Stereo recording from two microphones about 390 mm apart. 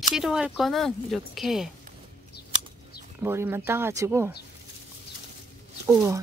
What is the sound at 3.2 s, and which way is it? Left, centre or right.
Speech, centre.